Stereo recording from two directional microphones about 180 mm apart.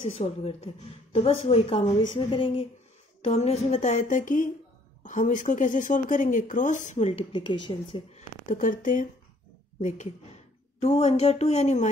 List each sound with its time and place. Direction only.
0.1 s a woman's voice: 35° left (ahead or behind)
8.5 s a woman's voice: 45° left (ahead or behind)